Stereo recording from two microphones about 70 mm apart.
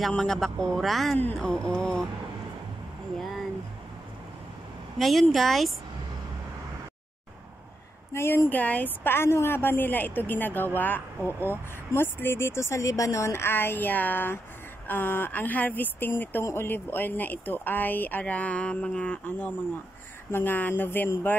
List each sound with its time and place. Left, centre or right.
0.1 s speech: centre
3.2 s a sound: centre
4.9 s speech: centre
8.1 s speech: left
8.5 s a woman's voice: left